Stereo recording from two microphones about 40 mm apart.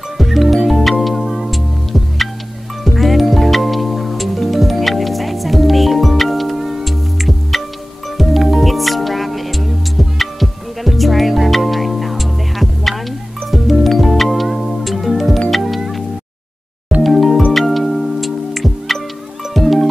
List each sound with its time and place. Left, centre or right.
0.2 s music: centre
17.0 s music: centre